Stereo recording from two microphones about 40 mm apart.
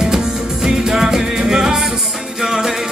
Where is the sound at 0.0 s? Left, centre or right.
Centre.